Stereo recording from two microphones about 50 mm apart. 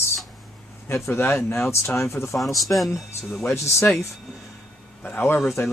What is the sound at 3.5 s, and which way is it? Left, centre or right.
Speech, left.